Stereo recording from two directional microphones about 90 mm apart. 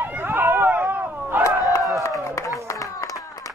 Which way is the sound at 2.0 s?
35° left (ahead or behind).